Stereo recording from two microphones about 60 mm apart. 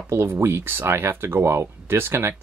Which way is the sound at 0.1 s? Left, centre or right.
Right.